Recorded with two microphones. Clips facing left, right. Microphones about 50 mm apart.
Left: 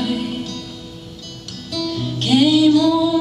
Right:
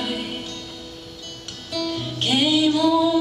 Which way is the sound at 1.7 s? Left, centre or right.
Centre.